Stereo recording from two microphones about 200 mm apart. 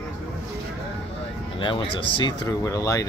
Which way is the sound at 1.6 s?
25° left (ahead or behind).